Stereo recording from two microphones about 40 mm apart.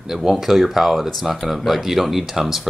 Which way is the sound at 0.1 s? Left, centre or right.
Centre.